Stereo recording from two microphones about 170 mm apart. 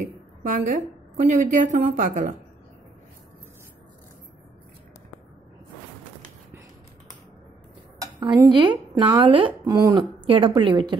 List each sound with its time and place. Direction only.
0.0 s a sound: 50° right (ahead or behind)
1.2 s a woman's voice: 50° right (ahead or behind)
8.0 s speech: 25° right (ahead or behind)